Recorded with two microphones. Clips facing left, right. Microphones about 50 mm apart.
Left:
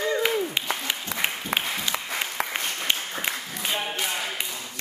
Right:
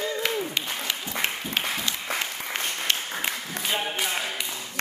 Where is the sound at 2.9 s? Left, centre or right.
Centre.